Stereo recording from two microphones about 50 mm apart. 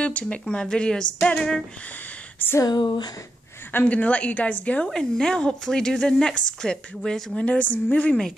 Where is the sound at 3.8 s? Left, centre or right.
Left.